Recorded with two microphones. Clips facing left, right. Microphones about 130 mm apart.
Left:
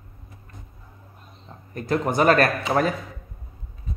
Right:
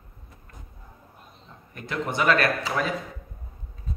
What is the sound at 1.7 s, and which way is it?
Speech, 40° left (ahead or behind).